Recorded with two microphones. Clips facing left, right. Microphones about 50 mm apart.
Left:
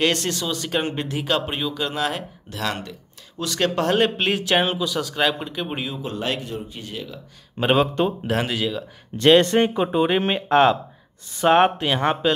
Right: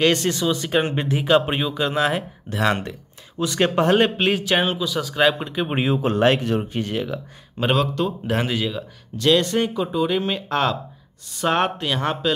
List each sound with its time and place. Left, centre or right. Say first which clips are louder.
0.0 s speech: right 3 dB; centre; by 3.0 s right
3.3 s speech: right 3 dB; centre
5.9 s speech: right 9 dB; right
6.4 s speech: right 9 dB; right
7.7 s speech: left 3 dB; left
8.3 s speech: even; centre
9.1 s speech: left 3 dB; left
10.5 s speech: left 7 dB; left